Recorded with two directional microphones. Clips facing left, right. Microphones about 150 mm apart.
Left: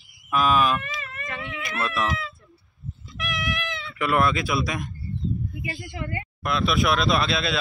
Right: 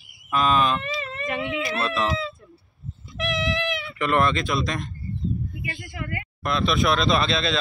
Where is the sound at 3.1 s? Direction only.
35° right (ahead or behind).